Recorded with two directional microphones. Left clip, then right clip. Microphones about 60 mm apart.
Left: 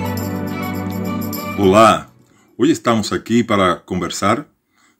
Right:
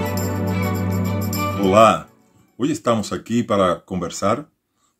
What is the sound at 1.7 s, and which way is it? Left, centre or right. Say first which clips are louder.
Speech: left 2 dB; centre.